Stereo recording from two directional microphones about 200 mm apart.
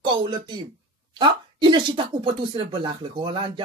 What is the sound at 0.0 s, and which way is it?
A woman's voice, 25° right (ahead or behind).